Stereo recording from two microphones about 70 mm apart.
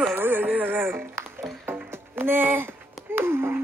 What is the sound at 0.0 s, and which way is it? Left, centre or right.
Music, right.